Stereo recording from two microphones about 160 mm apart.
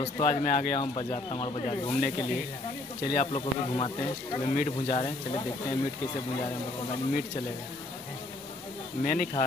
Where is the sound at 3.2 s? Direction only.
35° left (ahead or behind).